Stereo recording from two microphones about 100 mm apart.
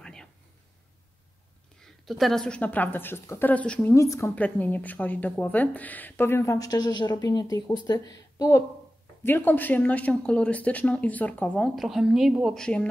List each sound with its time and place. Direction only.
0.0 s a sound: 5° left (ahead or behind)
1.8 s a woman's voice: centre (ahead or behind)
3.9 s a woman's voice: 30° left (ahead or behind)
4.4 s a woman's voice: 15° left (ahead or behind); by 8.6 s 35° left (ahead or behind)
9.2 s a woman's voice: 20° left (ahead or behind)
11.7 s a woman's voice: centre (ahead or behind)
12.5 s a woman's voice: 10° left (ahead or behind)